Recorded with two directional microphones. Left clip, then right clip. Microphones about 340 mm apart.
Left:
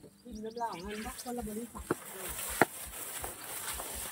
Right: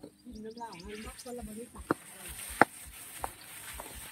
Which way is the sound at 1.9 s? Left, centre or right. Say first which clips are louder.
Left 5 dB; centre.